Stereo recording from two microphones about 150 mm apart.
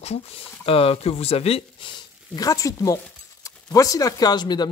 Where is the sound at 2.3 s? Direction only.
25° left (ahead or behind).